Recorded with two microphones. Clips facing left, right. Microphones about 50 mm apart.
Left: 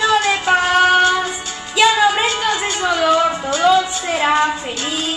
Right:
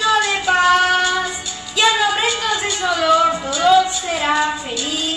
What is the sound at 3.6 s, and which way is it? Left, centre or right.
Speech, centre.